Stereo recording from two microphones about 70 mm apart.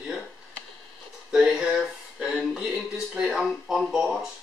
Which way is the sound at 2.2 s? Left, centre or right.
Centre.